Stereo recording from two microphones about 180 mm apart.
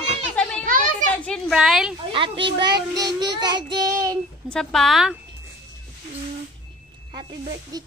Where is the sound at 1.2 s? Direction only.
Centre (ahead or behind).